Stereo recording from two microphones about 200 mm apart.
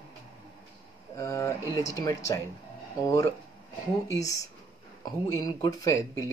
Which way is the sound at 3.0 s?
15° left (ahead or behind).